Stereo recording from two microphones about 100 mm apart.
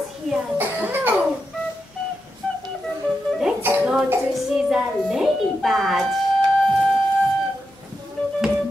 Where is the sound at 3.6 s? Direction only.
20° right (ahead or behind).